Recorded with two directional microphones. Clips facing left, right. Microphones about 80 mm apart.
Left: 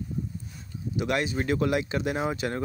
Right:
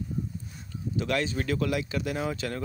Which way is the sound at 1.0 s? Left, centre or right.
Centre.